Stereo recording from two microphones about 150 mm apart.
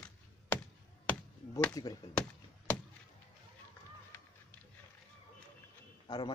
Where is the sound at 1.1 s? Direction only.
10° left (ahead or behind).